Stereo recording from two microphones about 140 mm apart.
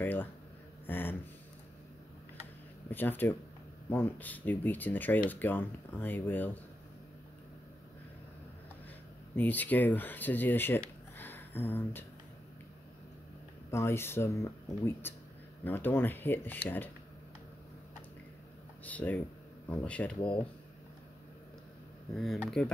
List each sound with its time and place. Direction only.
0.0 s a sound: 15° left (ahead or behind)
2.9 s speech: 15° left (ahead or behind)
9.3 s speech: 10° left (ahead or behind)
13.7 s speech: 20° left (ahead or behind)
18.9 s speech: 10° left (ahead or behind)
22.1 s speech: centre (ahead or behind)